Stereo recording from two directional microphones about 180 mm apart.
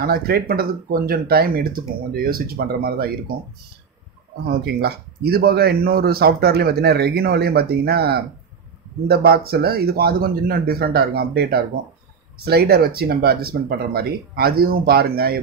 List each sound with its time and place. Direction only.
0.0 s speech: 55° right (ahead or behind)
4.5 s speech: 65° right (ahead or behind)